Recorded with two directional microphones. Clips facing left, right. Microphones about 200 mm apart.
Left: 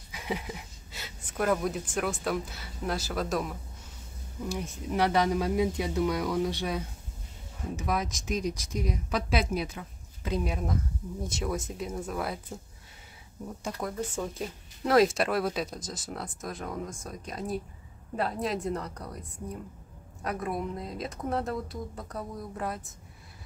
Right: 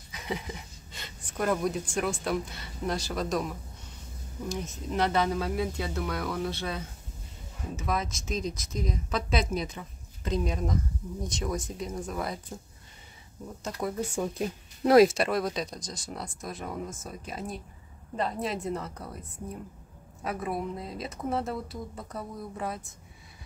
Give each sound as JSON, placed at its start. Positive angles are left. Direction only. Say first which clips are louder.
{"t": 0.1, "sound": "speech", "louder": "left 1 dB", "side_deg": 5}
{"t": 4.8, "sound": "a woman's voice", "louder": "left 1 dB", "side_deg": 10}
{"t": 13.7, "sound": "speech", "louder": "right 4 dB", "side_deg": -10}
{"t": 15.0, "sound": "speech", "louder": "even", "side_deg": 0}
{"t": 20.2, "sound": "speech", "louder": "even", "side_deg": -5}